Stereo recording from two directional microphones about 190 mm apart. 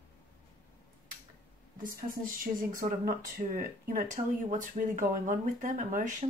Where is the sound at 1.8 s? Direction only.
50° right (ahead or behind).